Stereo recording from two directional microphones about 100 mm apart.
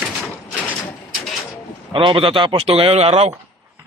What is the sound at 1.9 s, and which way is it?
Speech, 55° right (ahead or behind).